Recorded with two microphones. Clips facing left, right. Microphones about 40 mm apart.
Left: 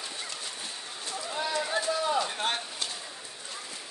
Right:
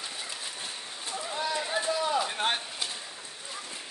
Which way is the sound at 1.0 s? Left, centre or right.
Right.